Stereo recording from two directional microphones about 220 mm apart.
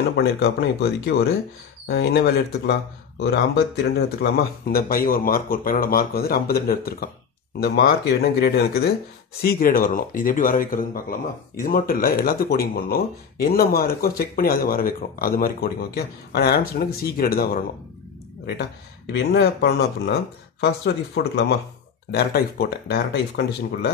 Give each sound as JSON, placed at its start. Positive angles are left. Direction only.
{"t": 0.1, "sound": "speech", "side_deg": 45}
{"t": 19.1, "sound": "speech", "side_deg": 45}